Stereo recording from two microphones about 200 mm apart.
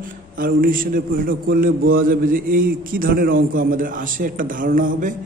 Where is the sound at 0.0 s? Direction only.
45° right (ahead or behind).